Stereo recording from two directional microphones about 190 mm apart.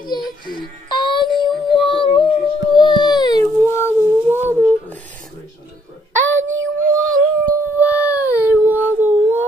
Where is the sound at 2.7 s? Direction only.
25° left (ahead or behind).